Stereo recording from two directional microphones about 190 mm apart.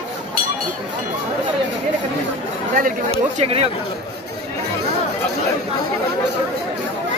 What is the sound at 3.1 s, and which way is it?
Speech, 30° right (ahead or behind).